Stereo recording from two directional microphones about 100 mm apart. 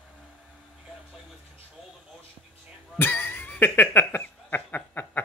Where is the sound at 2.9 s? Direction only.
20° left (ahead or behind).